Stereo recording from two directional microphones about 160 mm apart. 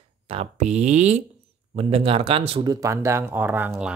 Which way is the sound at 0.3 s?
40° right (ahead or behind).